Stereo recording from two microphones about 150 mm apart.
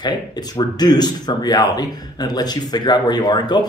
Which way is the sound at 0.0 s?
30° left (ahead or behind).